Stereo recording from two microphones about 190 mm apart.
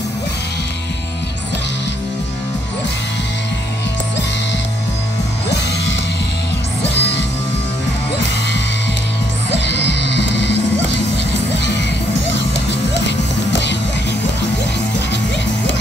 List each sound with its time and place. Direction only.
6.8 s music: 65° left (ahead or behind)
9.5 s music: 65° left (ahead or behind)
11.5 s children shouting: 65° left (ahead or behind)
12.9 s music: 65° left (ahead or behind)